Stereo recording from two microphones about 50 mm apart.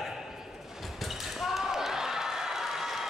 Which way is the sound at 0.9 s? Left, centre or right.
Centre.